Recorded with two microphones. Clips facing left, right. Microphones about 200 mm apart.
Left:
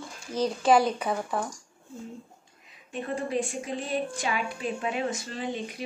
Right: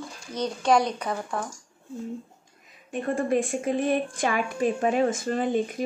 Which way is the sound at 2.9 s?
50° right (ahead or behind).